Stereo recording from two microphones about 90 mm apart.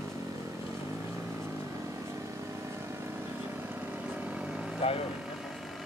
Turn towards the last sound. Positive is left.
turn(degrees=90)